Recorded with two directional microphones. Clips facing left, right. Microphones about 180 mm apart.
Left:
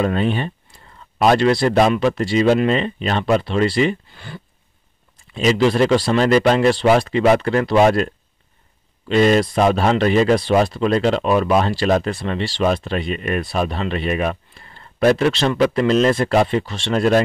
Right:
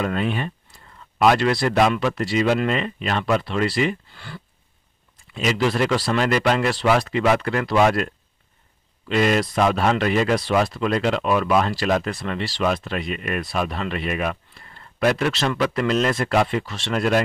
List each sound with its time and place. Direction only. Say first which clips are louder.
0.0 s speech: left 4 dB; 30° left (ahead or behind)
9.1 s speech: left 5 dB; 30° left (ahead or behind)